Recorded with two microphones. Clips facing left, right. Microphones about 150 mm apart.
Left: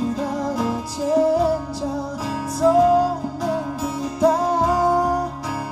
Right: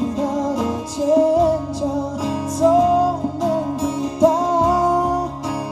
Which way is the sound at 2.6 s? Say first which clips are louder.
Right 1 dB; 20° right (ahead or behind).